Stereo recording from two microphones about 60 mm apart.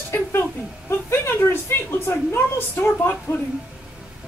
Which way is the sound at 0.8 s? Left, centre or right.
Left.